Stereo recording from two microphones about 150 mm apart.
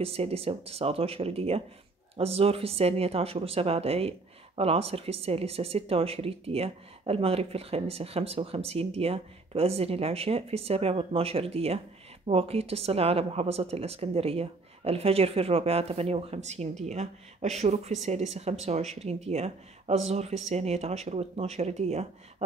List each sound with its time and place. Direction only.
0.0 s speech: 40° right (ahead or behind)